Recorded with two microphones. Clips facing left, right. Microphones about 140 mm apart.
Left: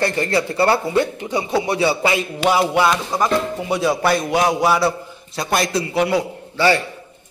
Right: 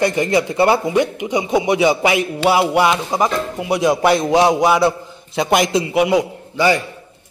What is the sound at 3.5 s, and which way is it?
A man's voice, 10° right (ahead or behind).